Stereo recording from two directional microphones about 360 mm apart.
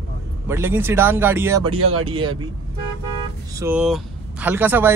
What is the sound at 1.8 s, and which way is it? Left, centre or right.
Speech, right.